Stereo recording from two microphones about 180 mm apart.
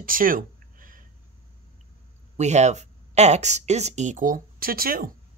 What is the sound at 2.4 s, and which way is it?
Speech, 40° right (ahead or behind).